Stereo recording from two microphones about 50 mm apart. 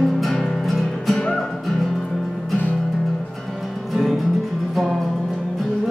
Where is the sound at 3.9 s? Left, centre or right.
Centre.